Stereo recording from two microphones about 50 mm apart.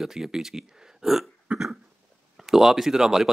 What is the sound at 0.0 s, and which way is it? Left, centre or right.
Speech, centre.